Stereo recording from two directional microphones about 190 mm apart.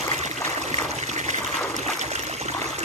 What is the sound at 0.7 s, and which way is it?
Water, 40° right (ahead or behind).